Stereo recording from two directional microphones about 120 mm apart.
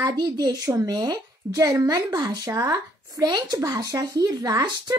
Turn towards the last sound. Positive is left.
turn(degrees=-35)  # may be behind; listen again after turning